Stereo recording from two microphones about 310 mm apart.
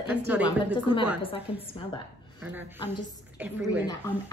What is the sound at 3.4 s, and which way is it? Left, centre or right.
Speech, centre.